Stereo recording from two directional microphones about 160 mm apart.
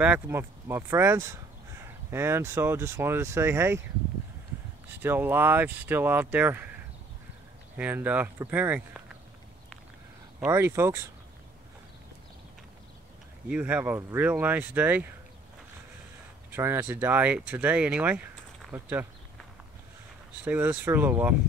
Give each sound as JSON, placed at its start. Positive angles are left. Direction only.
{"t": 0.0, "sound": "speech", "side_deg": -10}
{"t": 4.9, "sound": "speech", "side_deg": -15}
{"t": 7.7, "sound": "speech", "side_deg": -10}
{"t": 10.4, "sound": "speech", "side_deg": -15}
{"t": 13.5, "sound": "speech", "side_deg": -10}
{"t": 16.5, "sound": "speech", "side_deg": -15}
{"t": 20.4, "sound": "speech", "side_deg": -10}